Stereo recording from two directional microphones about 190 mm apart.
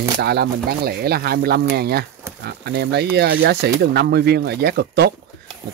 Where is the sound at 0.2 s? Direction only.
55° right (ahead or behind).